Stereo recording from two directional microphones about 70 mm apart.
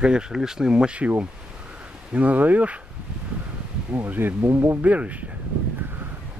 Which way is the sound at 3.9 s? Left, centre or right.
Right.